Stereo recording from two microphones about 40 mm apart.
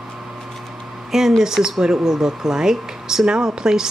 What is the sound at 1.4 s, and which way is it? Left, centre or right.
Speech, centre.